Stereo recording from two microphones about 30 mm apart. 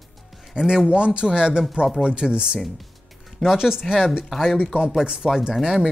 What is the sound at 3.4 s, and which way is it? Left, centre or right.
Speech, centre.